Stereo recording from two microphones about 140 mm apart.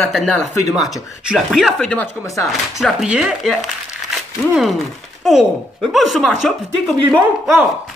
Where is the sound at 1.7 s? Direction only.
10° left (ahead or behind).